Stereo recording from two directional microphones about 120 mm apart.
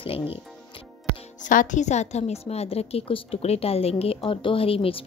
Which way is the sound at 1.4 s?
90° left.